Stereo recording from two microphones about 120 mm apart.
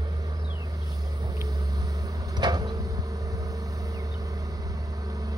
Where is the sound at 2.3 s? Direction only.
35° right (ahead or behind).